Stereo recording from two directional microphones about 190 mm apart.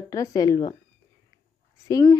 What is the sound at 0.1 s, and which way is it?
Speech, 20° left (ahead or behind).